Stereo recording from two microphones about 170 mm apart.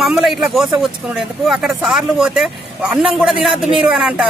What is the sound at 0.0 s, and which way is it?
Speech, centre (ahead or behind).